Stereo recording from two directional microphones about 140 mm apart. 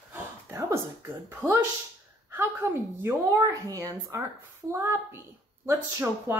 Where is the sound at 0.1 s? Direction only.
20° right (ahead or behind).